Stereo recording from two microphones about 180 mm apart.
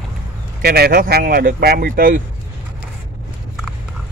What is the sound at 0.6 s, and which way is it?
Speech, 60° right (ahead or behind).